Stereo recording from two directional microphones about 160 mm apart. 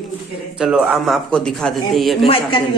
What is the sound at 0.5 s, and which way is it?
Speech, 5° right (ahead or behind).